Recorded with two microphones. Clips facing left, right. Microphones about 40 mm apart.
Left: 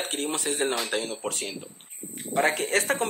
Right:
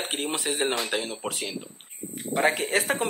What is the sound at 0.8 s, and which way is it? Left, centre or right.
Speech, centre.